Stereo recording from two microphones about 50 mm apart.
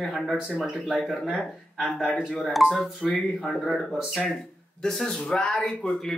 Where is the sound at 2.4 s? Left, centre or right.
Centre.